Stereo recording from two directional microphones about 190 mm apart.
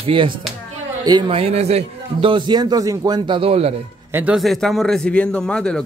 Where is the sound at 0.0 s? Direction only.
25° right (ahead or behind).